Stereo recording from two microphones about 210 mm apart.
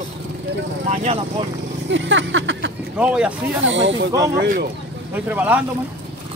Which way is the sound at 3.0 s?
5° right (ahead or behind).